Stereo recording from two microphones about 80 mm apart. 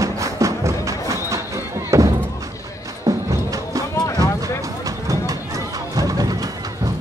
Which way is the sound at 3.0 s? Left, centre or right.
Right.